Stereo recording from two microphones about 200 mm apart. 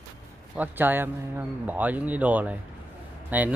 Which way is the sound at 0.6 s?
10° right (ahead or behind).